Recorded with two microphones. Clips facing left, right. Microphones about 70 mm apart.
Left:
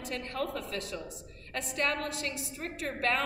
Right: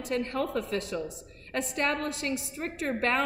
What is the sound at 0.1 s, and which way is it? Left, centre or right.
A woman's voice, right.